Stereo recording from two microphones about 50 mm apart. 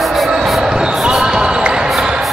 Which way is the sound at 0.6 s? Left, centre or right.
Centre.